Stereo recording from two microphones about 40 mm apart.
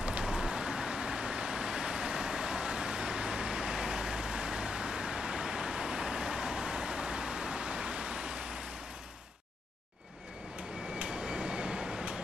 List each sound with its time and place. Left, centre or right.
0.2 s vehicle: centre
11.0 s train: right